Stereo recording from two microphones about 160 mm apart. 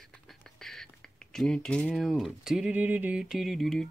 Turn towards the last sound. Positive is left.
turn(degrees=0)  # may be behind; listen again after turning